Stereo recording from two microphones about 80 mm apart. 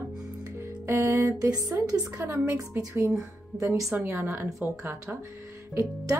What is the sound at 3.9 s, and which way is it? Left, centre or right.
A woman's voice, right.